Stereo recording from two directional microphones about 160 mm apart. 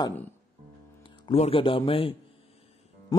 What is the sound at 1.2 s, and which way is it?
Speech, 35° left (ahead or behind).